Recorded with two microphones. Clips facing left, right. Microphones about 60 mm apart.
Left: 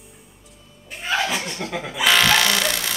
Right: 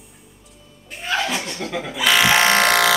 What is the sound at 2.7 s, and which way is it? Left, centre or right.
Electric toothbrush, right.